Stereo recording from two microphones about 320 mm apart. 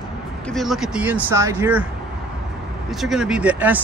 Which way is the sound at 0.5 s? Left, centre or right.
Centre.